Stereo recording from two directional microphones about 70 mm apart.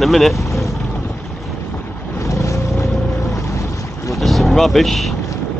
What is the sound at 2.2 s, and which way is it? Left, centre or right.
Vehicle, left.